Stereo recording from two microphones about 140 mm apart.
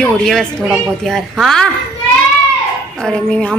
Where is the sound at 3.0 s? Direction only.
5° left (ahead or behind).